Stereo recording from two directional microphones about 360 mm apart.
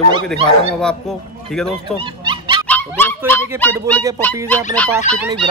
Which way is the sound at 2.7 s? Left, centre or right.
Centre.